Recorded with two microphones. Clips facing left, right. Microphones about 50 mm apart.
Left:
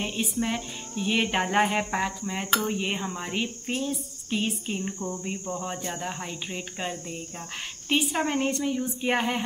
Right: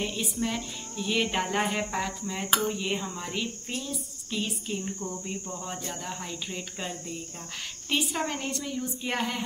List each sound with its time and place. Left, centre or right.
0.0 s speech: left